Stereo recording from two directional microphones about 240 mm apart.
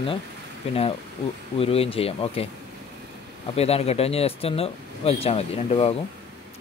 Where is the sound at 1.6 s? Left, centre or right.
Left.